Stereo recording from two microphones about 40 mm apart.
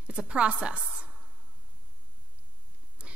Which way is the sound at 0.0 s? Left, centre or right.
Right.